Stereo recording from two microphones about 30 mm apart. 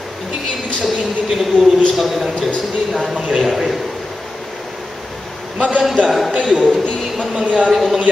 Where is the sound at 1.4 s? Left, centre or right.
Centre.